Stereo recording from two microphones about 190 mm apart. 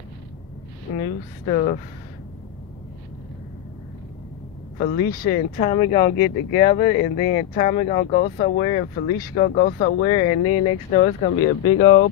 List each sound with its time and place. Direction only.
1.5 s speech: 45° left (ahead or behind)
4.7 s speech: 50° left (ahead or behind)
5.6 s speech: 40° left (ahead or behind)
9.0 s speech: 50° left (ahead or behind)
10.1 s speech: 40° left (ahead or behind)
11.4 s speech: 85° left